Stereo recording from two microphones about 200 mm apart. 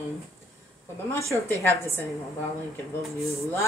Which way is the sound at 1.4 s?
10° left (ahead or behind).